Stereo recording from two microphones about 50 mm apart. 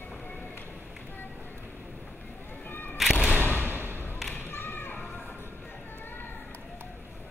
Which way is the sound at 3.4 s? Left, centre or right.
Right.